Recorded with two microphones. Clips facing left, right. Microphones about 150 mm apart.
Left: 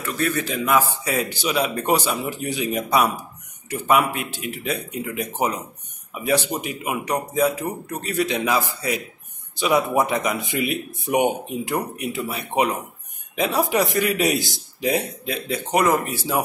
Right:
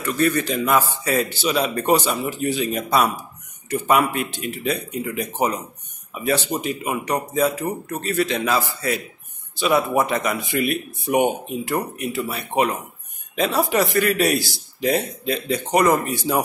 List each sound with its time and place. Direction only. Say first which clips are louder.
0.0 s a man's voice: right 4 dB; 5° left (ahead or behind)